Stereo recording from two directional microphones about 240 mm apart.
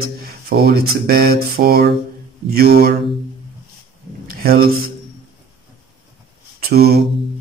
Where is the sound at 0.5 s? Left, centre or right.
Right.